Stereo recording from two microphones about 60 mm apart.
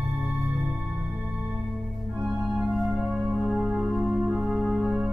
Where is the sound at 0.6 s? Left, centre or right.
Right.